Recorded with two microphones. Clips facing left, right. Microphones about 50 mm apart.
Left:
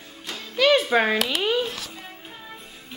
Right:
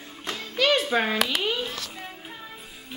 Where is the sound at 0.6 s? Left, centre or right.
Left.